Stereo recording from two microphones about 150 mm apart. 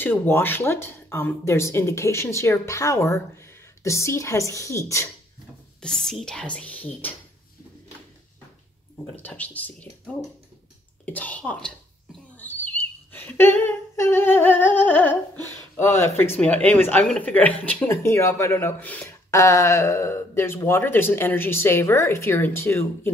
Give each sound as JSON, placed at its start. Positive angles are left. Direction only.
{"t": 0.0, "sound": "speech", "side_deg": 15}
{"t": 5.8, "sound": "speech", "side_deg": 5}
{"t": 8.9, "sound": "speech", "side_deg": 10}
{"t": 12.4, "sound": "humming", "side_deg": 10}
{"t": 15.7, "sound": "speech", "side_deg": 15}